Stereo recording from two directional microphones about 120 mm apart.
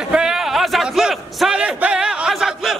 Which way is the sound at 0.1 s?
5° right (ahead or behind).